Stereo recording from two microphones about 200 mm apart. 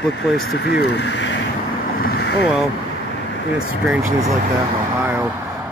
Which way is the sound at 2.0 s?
50° left (ahead or behind).